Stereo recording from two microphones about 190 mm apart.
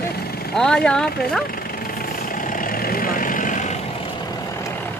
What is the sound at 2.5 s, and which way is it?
Vehicle, 45° left (ahead or behind).